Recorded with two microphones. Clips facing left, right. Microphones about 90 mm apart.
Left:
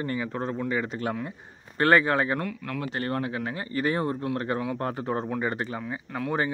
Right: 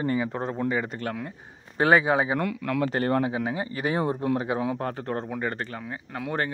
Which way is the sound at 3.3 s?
15° right (ahead or behind).